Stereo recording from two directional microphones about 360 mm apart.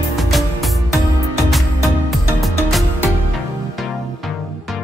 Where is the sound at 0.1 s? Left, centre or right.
Centre.